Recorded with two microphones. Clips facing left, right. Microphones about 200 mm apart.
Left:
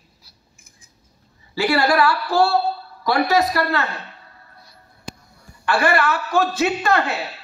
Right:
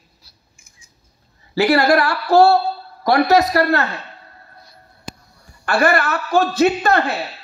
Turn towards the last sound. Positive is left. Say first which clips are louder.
# right 3 dB
turn(degrees=-35)  # may be behind; listen again after turning